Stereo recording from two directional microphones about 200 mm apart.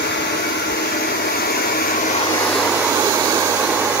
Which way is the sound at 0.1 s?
55° left (ahead or behind).